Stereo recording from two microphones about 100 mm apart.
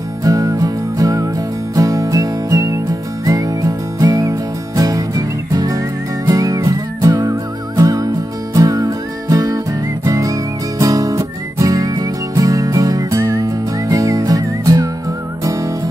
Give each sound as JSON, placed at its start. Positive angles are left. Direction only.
{"t": 0.2, "sound": "music", "side_deg": -35}